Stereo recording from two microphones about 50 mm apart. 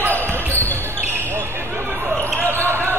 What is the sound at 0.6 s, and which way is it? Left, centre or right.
Basketball bounce, left.